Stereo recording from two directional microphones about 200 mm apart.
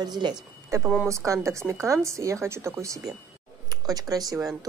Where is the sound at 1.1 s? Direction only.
15° right (ahead or behind).